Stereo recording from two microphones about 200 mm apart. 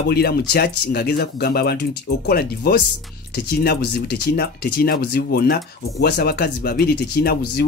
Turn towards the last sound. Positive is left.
turn(degrees=50)  # may be behind; listen again after turning